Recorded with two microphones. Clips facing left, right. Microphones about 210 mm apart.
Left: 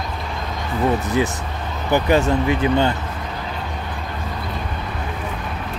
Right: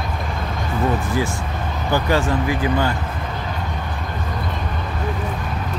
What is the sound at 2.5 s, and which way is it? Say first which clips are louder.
Speech: left 2 dB; 25° left (ahead or behind).